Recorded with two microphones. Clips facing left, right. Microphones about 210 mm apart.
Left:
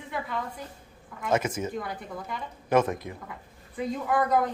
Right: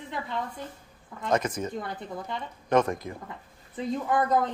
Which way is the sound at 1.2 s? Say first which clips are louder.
Even; 5° left (ahead or behind).